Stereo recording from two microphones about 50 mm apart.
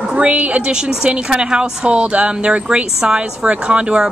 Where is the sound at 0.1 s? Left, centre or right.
Right.